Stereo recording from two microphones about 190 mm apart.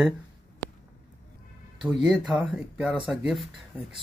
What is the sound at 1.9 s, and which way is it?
Speech, 5° right (ahead or behind).